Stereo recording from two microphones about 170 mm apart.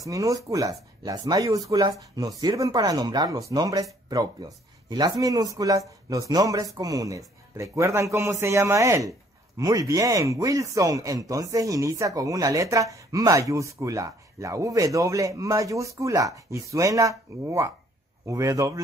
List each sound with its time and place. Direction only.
0.0 s speech: 20° right (ahead or behind)